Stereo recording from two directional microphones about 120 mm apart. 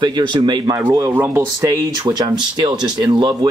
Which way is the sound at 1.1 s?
20° right (ahead or behind).